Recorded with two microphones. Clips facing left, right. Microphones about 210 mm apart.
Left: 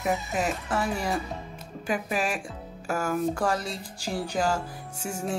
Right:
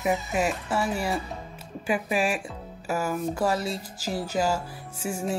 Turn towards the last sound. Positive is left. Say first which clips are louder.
# right 2 dB
turn(degrees=-5)  # may be behind; listen again after turning